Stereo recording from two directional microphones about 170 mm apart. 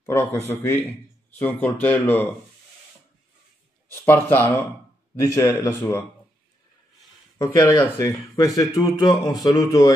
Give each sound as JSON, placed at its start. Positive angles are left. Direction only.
{"t": 0.0, "sound": "a man's voice", "side_deg": 10}
{"t": 3.9, "sound": "a man's voice", "side_deg": 10}
{"t": 7.4, "sound": "a man's voice", "side_deg": 15}